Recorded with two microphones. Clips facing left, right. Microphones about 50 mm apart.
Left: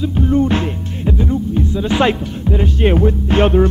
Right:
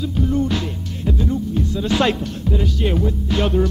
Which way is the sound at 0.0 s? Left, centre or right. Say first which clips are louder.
Left 5 dB; left.